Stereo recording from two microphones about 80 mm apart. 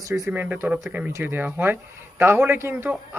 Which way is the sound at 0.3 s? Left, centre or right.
Right.